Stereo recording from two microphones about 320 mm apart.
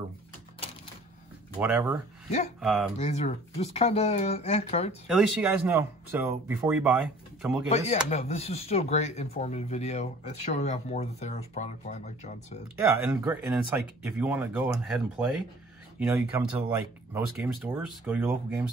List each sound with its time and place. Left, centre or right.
1.6 s speech: centre
3.0 s speech: left
5.0 s speech: centre
8.1 s speech: centre
13.0 s speech: centre